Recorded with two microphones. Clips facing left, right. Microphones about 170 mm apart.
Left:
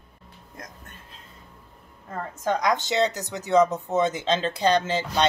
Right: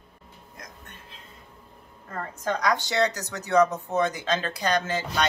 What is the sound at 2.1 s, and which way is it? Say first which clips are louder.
A woman's voice: left 3 dB; 15° left (ahead or behind).